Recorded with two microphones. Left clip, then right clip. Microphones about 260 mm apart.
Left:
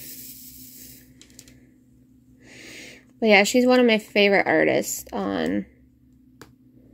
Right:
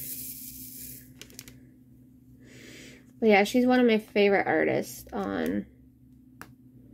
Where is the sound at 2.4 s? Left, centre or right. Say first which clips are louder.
Left 7 dB; centre.